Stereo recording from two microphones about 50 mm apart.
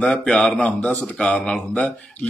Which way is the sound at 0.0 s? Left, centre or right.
Centre.